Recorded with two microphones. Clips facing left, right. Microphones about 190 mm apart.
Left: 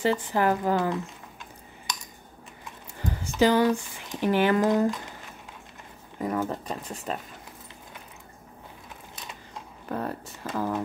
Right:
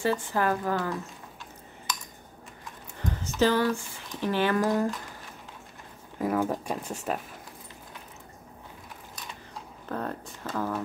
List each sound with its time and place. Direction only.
0.0 s speech: 15° left (ahead or behind)
3.0 s speech: 10° left (ahead or behind)
6.1 s speech: centre (ahead or behind)
9.8 s speech: 10° left (ahead or behind)